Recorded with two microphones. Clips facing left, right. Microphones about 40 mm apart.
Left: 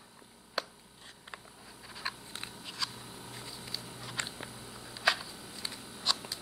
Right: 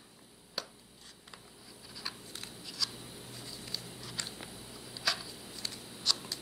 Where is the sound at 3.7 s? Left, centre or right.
Centre.